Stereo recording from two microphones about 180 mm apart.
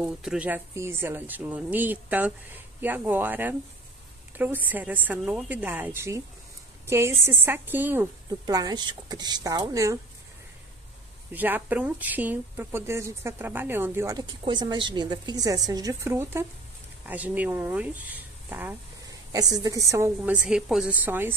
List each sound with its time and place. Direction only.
0.0 s speech: 5° right (ahead or behind); by 9.9 s 20° right (ahead or behind)
11.3 s speech: 10° right (ahead or behind)